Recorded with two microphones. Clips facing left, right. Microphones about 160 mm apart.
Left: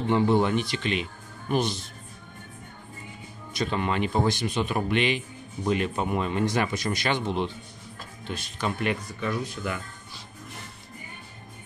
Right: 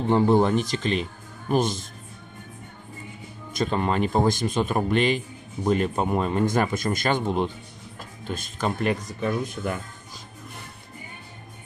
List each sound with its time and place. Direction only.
0.1 s speech: 40° right (ahead or behind)
3.5 s speech: 40° right (ahead or behind)